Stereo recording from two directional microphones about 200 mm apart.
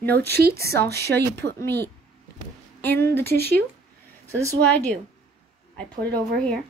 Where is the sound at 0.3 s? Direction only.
50° right (ahead or behind).